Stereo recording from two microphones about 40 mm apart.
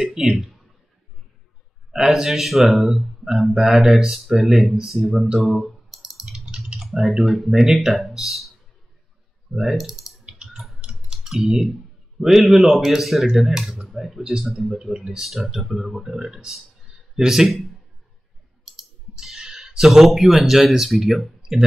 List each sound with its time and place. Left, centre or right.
0.0 s speech: centre
1.9 s speech: centre
5.4 s clicking: centre
6.4 s typing: right
6.8 s speech: centre
9.6 s speech: centre
10.2 s a sound: right
11.2 s speech: centre
17.5 s speech: centre
19.2 s speech: centre
21.4 s a sound: right